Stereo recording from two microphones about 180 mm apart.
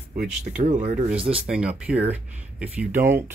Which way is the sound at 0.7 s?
40° right (ahead or behind).